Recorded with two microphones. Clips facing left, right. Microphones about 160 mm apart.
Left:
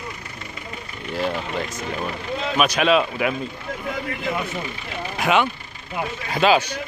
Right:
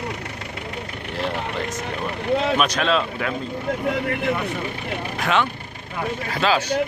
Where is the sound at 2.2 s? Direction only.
65° right (ahead or behind).